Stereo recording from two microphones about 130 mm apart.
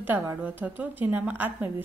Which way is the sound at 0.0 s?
15° right (ahead or behind).